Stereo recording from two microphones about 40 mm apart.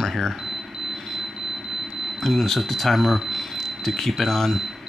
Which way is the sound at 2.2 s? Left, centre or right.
Centre.